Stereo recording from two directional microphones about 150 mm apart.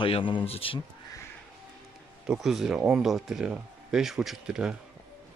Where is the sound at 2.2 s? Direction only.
5° right (ahead or behind).